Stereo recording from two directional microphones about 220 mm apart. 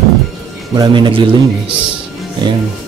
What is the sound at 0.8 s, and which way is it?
Speech, 20° right (ahead or behind).